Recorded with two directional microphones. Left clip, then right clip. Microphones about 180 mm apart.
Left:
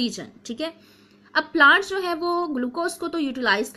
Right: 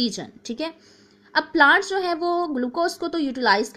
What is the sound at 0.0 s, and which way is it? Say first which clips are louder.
A woman's voice: right 2 dB; 30° right (ahead or behind).